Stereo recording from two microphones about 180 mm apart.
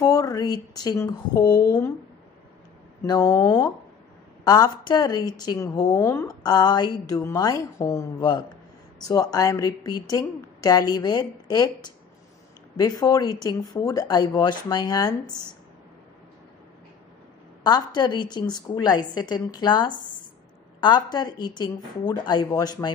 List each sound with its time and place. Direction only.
0.0 s speech: 20° left (ahead or behind)
3.0 s a woman's voice: 20° left (ahead or behind)
17.6 s a woman's voice: 25° left (ahead or behind)